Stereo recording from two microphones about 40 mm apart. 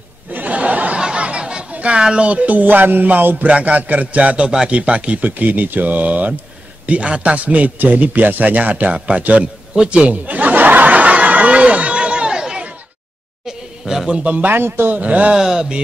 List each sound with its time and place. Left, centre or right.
0.3 s chuckle: right
0.9 s a sound: right
2.0 s speech: right
3.4 s a man's voice: right
6.9 s a man's voice: right
7.8 s a man's voice: right
10.2 s snicker: right; by 12.6 s centre
13.5 s a sound: centre
14.1 s a man's voice: right
14.5 s a man's voice: right
15.0 s a man's voice: right
15.3 s speech: centre